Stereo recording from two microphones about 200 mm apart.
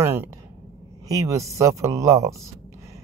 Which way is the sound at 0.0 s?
10° right (ahead or behind).